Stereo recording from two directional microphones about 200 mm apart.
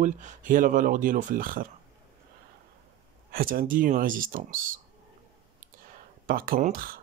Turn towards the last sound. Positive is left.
turn(degrees=-45)  # may be behind; listen again after turning